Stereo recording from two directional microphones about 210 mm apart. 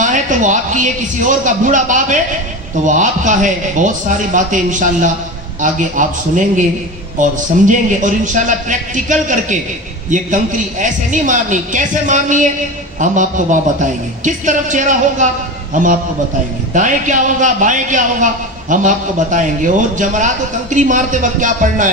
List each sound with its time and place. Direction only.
0.0 s a man's voice: 35° right (ahead or behind)